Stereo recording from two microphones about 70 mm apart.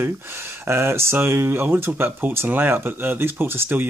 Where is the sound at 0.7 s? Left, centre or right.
Right.